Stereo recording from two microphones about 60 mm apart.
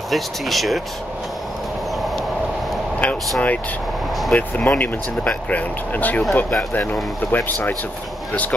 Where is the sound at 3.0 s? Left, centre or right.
Left.